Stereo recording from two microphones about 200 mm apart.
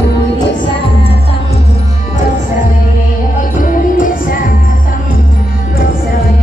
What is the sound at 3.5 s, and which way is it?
Music, 40° left (ahead or behind).